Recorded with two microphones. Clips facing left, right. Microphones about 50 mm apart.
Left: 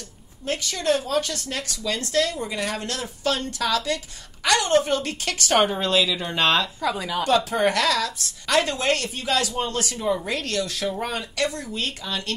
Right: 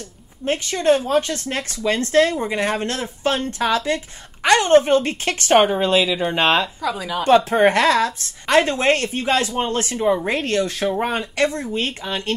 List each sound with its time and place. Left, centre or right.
0.5 s speech: right
5.7 s speech: right
6.8 s a woman's voice: centre
7.2 s speech: right